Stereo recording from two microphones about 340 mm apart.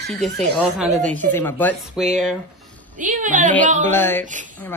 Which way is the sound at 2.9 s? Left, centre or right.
Right.